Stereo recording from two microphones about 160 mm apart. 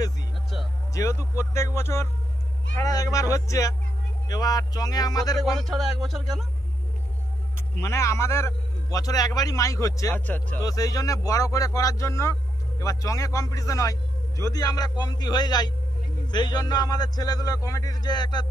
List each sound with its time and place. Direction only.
0.9 s speech: 15° left (ahead or behind)
5.6 s speech: centre (ahead or behind)
7.8 s speech: 20° left (ahead or behind)
10.6 s speech: 20° left (ahead or behind)